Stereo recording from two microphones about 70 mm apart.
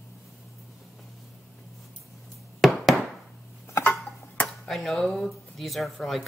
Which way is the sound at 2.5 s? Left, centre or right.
Centre.